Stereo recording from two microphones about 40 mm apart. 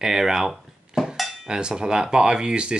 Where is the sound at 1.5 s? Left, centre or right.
Centre.